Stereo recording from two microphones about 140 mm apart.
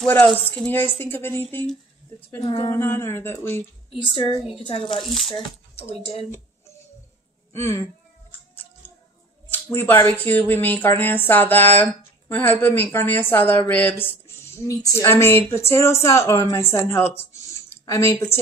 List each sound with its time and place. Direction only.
0.2 s speech: 15° left (ahead or behind)
2.4 s a woman's voice: 35° left (ahead or behind)
2.7 s speech: 20° left (ahead or behind)
4.1 s a woman's voice: 35° left (ahead or behind)
4.9 s speech: centre (ahead or behind)
5.9 s speech: 45° left (ahead or behind)
7.5 s speech: 20° left (ahead or behind)
9.7 s speech: 15° left (ahead or behind)